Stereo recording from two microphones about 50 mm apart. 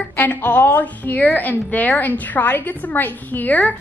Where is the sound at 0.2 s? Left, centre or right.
Left.